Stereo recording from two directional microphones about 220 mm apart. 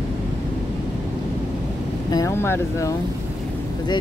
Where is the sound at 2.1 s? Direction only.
15° left (ahead or behind).